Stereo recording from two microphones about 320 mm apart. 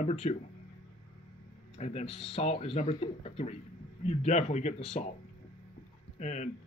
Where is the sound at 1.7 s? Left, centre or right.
Centre.